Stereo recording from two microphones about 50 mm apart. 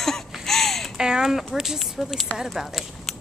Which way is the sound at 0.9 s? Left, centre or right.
Centre.